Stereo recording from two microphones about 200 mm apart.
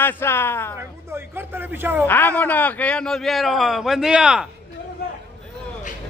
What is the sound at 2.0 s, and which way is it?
A man's voice, 10° left (ahead or behind).